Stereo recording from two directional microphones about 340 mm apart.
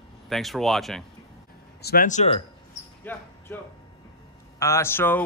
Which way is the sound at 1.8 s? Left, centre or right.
Left.